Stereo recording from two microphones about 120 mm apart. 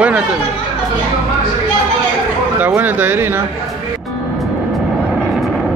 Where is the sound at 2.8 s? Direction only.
15° right (ahead or behind).